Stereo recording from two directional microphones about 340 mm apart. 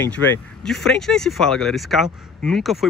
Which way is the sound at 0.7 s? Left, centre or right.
Centre.